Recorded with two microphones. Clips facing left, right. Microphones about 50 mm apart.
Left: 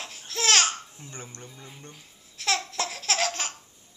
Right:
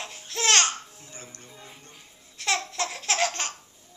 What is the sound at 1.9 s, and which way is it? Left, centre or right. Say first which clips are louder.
Laughter: left 1 dB; centre.